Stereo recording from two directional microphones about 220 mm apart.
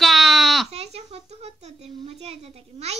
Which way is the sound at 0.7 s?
30° right (ahead or behind).